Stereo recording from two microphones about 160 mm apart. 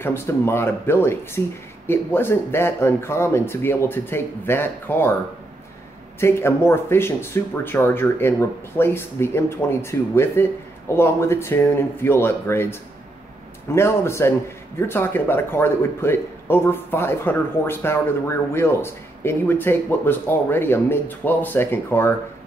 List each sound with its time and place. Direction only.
0.0 s speech: 15° left (ahead or behind)
6.1 s speech: 15° left (ahead or behind)
13.7 s speech: 15° left (ahead or behind)